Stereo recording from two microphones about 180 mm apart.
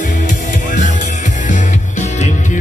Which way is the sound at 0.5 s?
45° left (ahead or behind).